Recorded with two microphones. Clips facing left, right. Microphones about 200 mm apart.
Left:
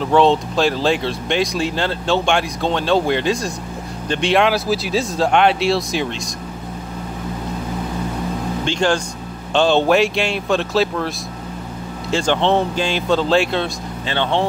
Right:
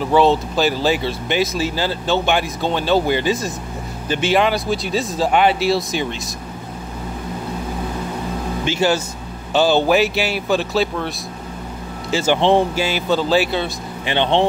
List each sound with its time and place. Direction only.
0.0 s speech: 5° right (ahead or behind)
8.6 s speech: 5° right (ahead or behind)
12.1 s speech: 5° right (ahead or behind)
14.0 s speech: 20° right (ahead or behind)